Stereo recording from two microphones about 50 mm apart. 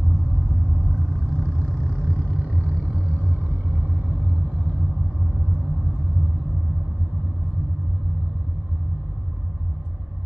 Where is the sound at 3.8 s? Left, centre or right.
Centre.